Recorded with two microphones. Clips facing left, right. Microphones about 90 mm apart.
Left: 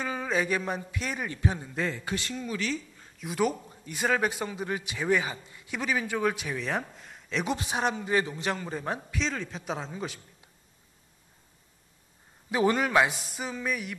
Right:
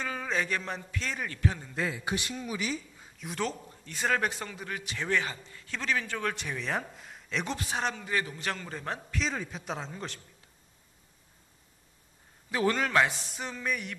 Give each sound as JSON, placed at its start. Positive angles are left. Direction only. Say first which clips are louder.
{"t": 0.0, "sound": "speech", "louder": "left 3 dB", "side_deg": 10}
{"t": 2.0, "sound": "speech", "louder": "left 1 dB", "side_deg": -15}
{"t": 3.2, "sound": "speech", "louder": "left 6 dB", "side_deg": 5}
{"t": 7.4, "sound": "speech", "louder": "left 5 dB", "side_deg": 15}
{"t": 9.2, "sound": "a man's voice", "louder": "left 1 dB", "side_deg": -5}
{"t": 12.4, "sound": "speech", "louder": "left 3 dB", "side_deg": 15}